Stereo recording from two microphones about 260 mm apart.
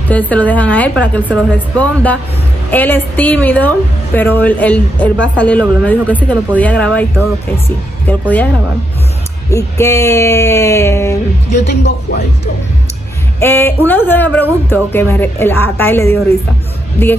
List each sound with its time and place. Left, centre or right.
0.1 s a woman's voice: centre
8.1 s a woman's voice: centre
9.5 s a woman's voice: centre
11.5 s speech: left
13.4 s a woman's voice: centre